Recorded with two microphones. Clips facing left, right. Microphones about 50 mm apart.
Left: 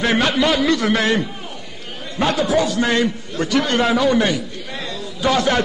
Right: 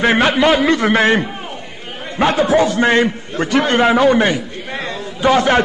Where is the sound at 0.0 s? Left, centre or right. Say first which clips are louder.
Right 4 dB; right.